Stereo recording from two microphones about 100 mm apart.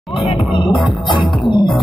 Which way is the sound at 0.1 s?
60° left (ahead or behind).